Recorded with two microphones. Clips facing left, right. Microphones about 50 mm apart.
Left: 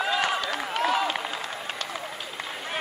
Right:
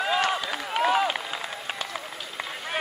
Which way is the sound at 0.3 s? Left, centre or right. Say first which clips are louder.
Even; centre.